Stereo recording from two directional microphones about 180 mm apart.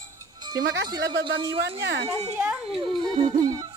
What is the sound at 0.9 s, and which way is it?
Speech, 60° right (ahead or behind).